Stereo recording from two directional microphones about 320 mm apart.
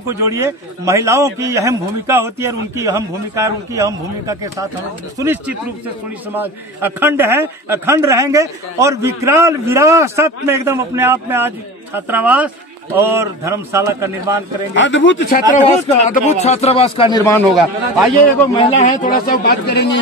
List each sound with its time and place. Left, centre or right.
0.2 s a man's voice: centre
14.8 s speech: left
16.1 s a man's voice: centre
18.5 s a man's voice: centre